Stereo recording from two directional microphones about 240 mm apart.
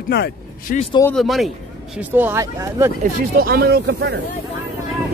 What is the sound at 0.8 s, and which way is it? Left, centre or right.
Speech, centre.